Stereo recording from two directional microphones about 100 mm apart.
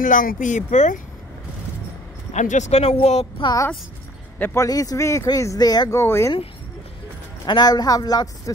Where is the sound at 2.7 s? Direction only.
90° left.